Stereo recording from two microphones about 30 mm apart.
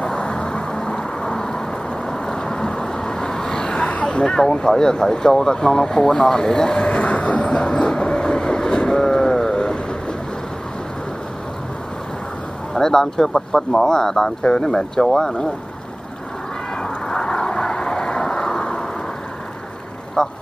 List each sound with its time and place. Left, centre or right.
0.2 s vehicle: left
4.0 s speech: left
6.9 s vehicle: left
7.6 s train: left
9.5 s vehicle: left
12.7 s speech: centre
17.1 s vehicle: left
20.2 s vehicle: centre